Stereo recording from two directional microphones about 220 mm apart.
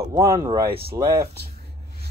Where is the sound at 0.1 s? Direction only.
15° right (ahead or behind).